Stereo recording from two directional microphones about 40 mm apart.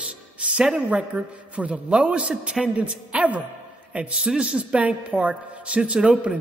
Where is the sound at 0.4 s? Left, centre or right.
Right.